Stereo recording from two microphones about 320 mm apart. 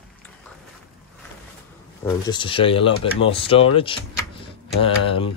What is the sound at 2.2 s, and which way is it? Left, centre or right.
Speech, centre.